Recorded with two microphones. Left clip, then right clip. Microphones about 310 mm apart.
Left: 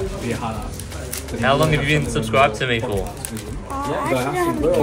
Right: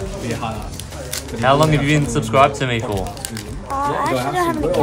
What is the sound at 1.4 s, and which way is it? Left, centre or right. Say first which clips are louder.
Speech: right 3 dB; centre.